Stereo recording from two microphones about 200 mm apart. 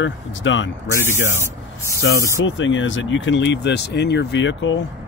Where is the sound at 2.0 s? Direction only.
70° left (ahead or behind).